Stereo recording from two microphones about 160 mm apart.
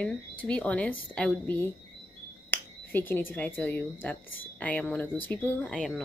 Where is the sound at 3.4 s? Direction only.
10° left (ahead or behind).